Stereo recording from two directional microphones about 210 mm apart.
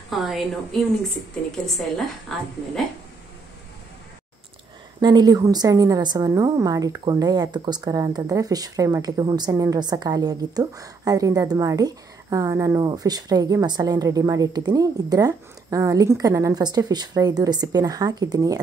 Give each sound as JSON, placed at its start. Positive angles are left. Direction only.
{"t": 0.1, "sound": "a woman's voice", "side_deg": 0}
{"t": 2.0, "sound": "a woman's voice", "side_deg": 0}
{"t": 5.0, "sound": "a woman's voice", "side_deg": -20}